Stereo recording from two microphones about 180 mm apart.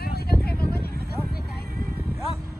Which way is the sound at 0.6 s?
10° right (ahead or behind).